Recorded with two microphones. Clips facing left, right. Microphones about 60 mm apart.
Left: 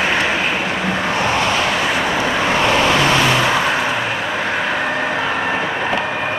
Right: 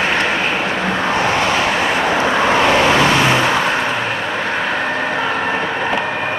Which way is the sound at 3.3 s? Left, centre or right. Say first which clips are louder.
Right 1 dB; centre.